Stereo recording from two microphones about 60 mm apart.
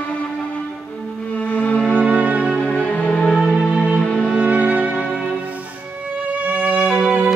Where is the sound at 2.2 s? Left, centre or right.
Centre.